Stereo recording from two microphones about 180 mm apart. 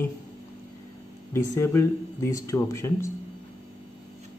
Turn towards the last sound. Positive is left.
turn(degrees=15)  # may be behind; listen again after turning